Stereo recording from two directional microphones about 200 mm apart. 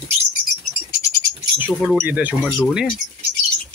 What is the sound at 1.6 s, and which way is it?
Speech, centre (ahead or behind).